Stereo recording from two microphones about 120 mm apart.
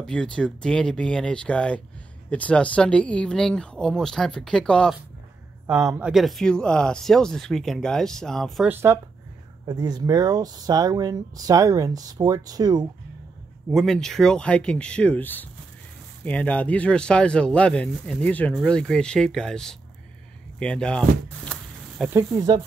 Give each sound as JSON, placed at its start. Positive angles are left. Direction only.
{"t": 0.0, "sound": "speech", "side_deg": 5}
{"t": 5.7, "sound": "speech", "side_deg": -30}
{"t": 5.9, "sound": "speech", "side_deg": -5}
{"t": 8.6, "sound": "speech", "side_deg": -20}
{"t": 9.7, "sound": "speech", "side_deg": -35}
{"t": 13.7, "sound": "speech", "side_deg": 0}
{"t": 20.5, "sound": "a sound", "side_deg": 10}
{"t": 22.1, "sound": "speech", "side_deg": -30}